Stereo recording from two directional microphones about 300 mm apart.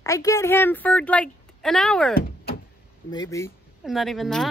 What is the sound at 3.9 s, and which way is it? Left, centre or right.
Speech, centre.